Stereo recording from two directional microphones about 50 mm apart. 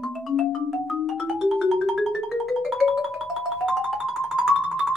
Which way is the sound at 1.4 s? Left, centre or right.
Centre.